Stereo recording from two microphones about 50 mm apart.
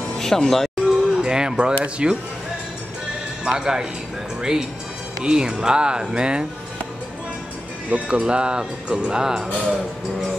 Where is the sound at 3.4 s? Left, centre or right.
Centre.